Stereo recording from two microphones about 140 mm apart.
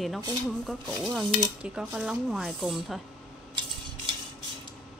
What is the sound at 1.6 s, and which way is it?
Speech, 5° right (ahead or behind).